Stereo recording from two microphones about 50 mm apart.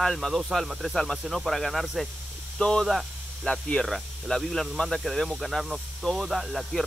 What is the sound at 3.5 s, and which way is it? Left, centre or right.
Speech, centre.